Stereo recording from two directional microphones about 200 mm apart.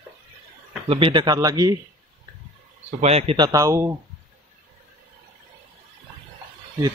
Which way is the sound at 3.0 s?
30° right (ahead or behind).